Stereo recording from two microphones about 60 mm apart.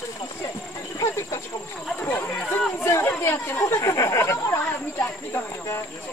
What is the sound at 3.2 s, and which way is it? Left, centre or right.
Snake, left.